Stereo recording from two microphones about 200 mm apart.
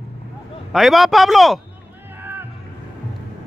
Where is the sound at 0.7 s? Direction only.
Centre (ahead or behind).